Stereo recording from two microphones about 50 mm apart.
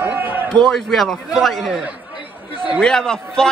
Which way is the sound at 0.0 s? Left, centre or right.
Right.